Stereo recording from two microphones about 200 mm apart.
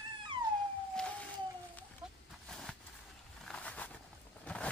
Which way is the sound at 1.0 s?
5° left (ahead or behind).